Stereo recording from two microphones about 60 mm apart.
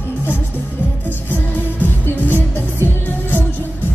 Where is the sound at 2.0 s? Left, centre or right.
Left.